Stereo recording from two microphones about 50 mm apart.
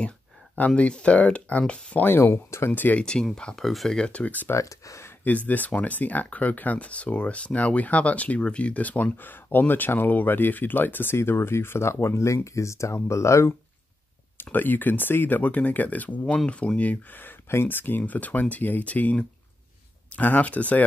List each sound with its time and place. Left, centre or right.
0.6 s speech: left
2.0 s speech: left
2.3 s speech: left
2.7 s speech: left
3.0 s speech: centre
3.5 s speech: centre
3.9 s speech: left
4.6 s speech: left
5.2 s speech: left
11.1 s speech: left
11.9 s speech: left
12.4 s speech: left
14.3 s speech: left
20.2 s speech: left